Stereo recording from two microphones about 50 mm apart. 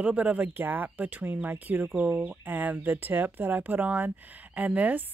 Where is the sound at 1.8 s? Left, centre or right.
Right.